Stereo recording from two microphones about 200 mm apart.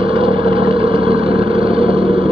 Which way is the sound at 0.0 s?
25° right (ahead or behind).